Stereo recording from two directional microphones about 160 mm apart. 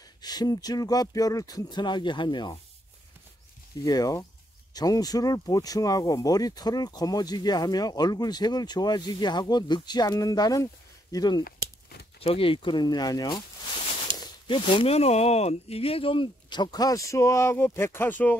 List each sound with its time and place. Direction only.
0.2 s speech: 25° left (ahead or behind)
3.8 s speech: 25° left (ahead or behind)
12.2 s speech: 35° left (ahead or behind); by 18.4 s 10° left (ahead or behind)